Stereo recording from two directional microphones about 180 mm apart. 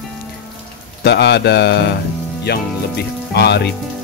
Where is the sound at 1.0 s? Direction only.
70° left (ahead or behind).